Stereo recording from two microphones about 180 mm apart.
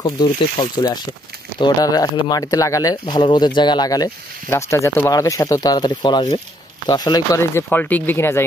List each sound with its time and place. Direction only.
0.0 s speech: 25° left (ahead or behind)